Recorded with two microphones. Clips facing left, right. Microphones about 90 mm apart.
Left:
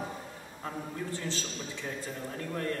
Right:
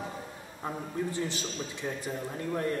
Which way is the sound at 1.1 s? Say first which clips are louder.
Right 3 dB; 15° right (ahead or behind).